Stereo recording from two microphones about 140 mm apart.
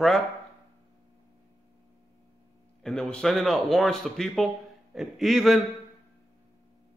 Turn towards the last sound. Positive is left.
turn(degrees=0)  # may be behind; listen again after turning